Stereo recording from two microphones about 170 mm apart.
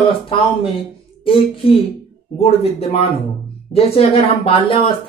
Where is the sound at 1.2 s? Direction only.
35° left (ahead or behind).